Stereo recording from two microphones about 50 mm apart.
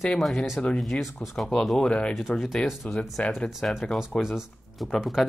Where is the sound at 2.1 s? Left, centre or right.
Centre.